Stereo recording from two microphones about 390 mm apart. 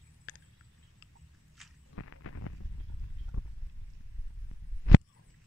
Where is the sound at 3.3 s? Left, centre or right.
Left.